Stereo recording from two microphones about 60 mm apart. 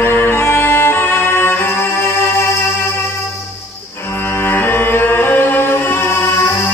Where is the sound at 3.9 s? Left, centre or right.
Left.